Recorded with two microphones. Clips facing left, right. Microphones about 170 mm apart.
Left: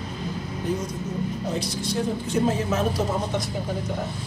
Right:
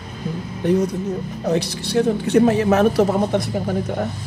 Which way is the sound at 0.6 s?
70° right (ahead or behind).